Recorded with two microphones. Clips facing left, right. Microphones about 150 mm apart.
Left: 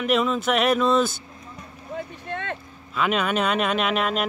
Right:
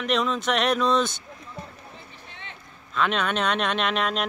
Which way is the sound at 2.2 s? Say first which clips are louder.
Left 14 dB; 60° left (ahead or behind).